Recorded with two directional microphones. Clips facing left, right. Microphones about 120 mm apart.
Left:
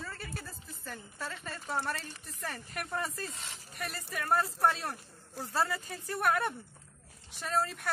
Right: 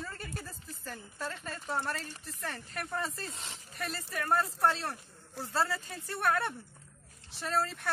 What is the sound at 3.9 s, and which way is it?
Speech, 10° left (ahead or behind).